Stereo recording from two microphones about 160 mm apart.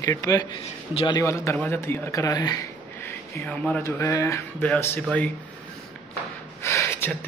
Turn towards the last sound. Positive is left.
turn(degrees=15)  # may be behind; listen again after turning